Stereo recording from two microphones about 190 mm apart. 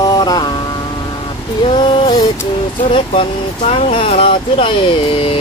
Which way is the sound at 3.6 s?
30° left (ahead or behind).